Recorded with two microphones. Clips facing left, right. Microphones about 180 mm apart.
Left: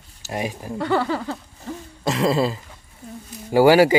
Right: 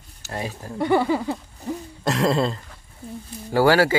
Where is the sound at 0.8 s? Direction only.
15° right (ahead or behind).